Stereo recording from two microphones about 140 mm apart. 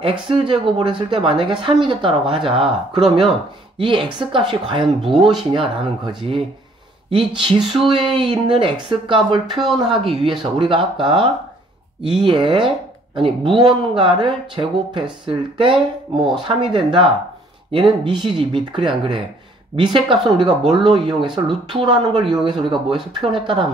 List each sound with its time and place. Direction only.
0.0 s speech: 40° right (ahead or behind)
4.8 s speech: centre (ahead or behind)
5.5 s speech: 35° right (ahead or behind)